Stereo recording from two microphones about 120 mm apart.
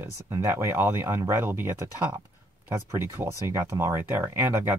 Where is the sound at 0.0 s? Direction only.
20° right (ahead or behind).